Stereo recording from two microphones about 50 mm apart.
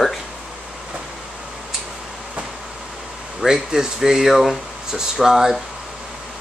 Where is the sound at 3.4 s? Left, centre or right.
Centre.